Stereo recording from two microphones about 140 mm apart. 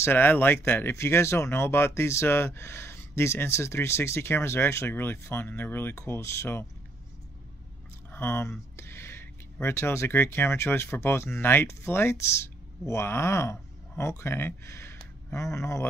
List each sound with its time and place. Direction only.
0.0 s speech: 15° left (ahead or behind)
8.1 s speech: 15° left (ahead or behind)